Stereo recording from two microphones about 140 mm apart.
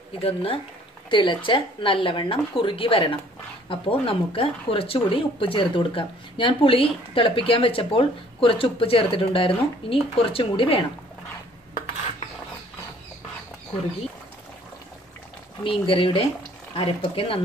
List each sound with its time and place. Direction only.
0.2 s speech: 45° left (ahead or behind)
15.6 s speech: 40° left (ahead or behind)